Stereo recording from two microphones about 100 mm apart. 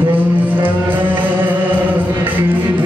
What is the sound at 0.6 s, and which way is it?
Music, 20° right (ahead or behind).